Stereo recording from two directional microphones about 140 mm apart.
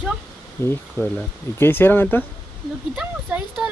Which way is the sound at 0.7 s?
10° left (ahead or behind).